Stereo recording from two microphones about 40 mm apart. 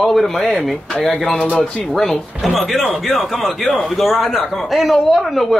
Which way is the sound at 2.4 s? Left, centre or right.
Centre.